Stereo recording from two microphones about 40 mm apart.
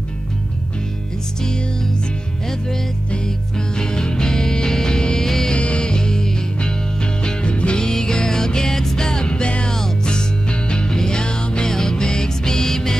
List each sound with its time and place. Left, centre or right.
3.1 s music: centre
5.5 s music: left